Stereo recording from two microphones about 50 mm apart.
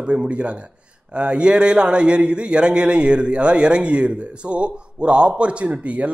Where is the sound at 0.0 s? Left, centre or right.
Right.